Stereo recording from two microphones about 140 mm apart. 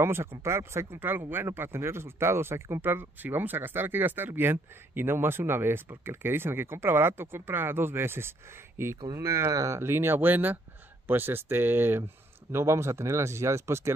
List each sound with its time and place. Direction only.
0.0 s speech: 15° right (ahead or behind)